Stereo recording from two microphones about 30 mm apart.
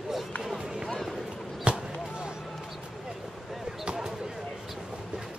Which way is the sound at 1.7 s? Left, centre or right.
Right.